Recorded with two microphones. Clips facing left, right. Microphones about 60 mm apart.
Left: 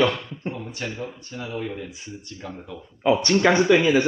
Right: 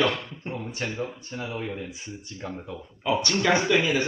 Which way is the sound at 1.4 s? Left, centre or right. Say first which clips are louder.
Left 2 dB; centre.